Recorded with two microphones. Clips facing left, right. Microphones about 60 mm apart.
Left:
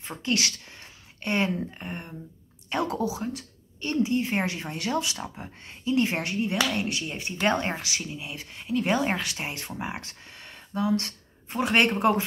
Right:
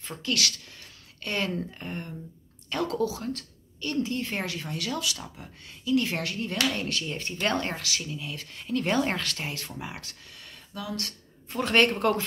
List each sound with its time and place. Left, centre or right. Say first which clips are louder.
0.0 s a sound: left 2 dB; left
1.6 s a woman's voice: even; centre
11.6 s speech: left 1 dB; centre